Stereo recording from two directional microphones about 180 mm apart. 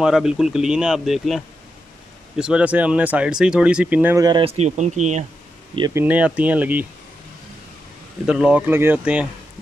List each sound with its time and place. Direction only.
0.0 s speech: 5° right (ahead or behind); by 5.2 s 40° right (ahead or behind)
5.8 s speech: 20° right (ahead or behind)
6.0 s speech: 5° right (ahead or behind)
8.3 s speech: 5° right (ahead or behind)